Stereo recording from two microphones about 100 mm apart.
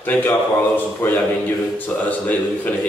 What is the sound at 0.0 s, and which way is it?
A man's voice, 15° left (ahead or behind).